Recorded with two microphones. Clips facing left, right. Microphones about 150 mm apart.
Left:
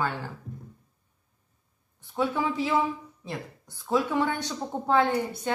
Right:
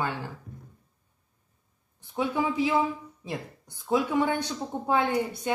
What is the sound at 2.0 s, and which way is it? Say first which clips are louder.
A woman's voice: even; 15° right (ahead or behind).